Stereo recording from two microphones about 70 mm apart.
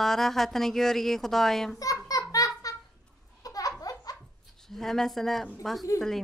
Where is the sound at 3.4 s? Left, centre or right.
Left.